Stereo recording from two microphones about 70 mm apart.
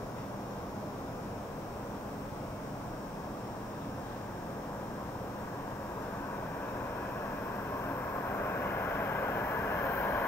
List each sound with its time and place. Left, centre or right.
8.5 s vehicle: left